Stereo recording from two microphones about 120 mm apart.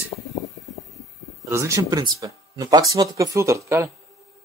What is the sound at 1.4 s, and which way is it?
Speech, 25° right (ahead or behind).